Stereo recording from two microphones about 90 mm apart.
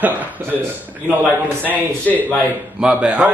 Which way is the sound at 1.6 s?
20° left (ahead or behind).